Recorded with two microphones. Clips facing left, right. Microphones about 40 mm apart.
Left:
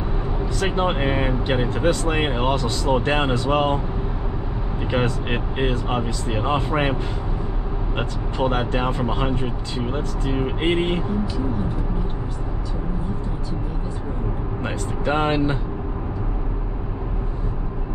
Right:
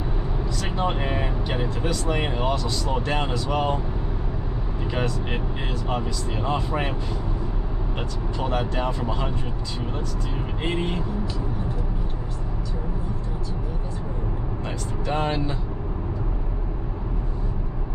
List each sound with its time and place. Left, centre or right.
0.6 s speech: left
4.9 s speech: left
8.0 s speech: left
14.6 s speech: left